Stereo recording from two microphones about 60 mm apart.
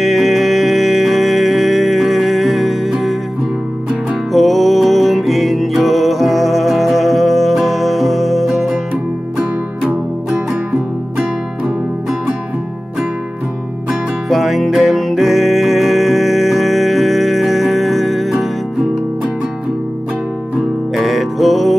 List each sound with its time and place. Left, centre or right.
0.0 s music: centre
4.3 s music: centre
9.4 s music: centre
14.3 s music: centre
20.5 s music: centre